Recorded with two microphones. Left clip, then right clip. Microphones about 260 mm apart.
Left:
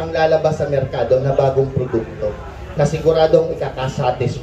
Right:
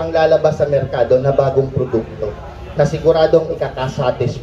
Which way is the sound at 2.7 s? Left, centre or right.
Centre.